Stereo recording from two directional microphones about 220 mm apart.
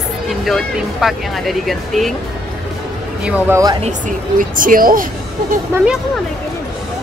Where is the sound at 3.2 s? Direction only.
15° right (ahead or behind).